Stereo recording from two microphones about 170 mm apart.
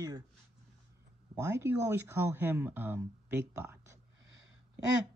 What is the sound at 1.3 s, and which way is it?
Speech, 15° right (ahead or behind).